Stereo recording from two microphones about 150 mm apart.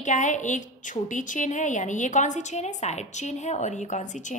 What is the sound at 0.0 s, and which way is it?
A woman's voice, 55° left (ahead or behind).